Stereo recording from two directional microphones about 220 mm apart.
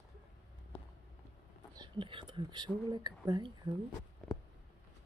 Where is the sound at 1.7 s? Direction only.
20° right (ahead or behind).